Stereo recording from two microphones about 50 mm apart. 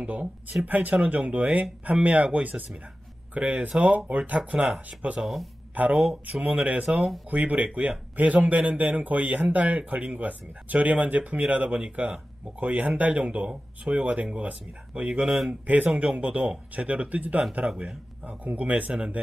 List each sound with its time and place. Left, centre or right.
0.0 s a man's voice: right
5.2 s speech: centre
5.8 s a man's voice: right
15.2 s speech: centre
15.6 s a man's voice: right
17.6 s a man's voice: centre
18.2 s speech: right
18.9 s speech: right